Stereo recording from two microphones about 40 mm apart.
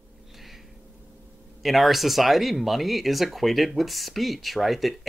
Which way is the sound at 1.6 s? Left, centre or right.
Centre.